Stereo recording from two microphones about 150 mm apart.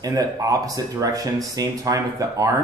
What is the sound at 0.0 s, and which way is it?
Speech, 25° right (ahead or behind).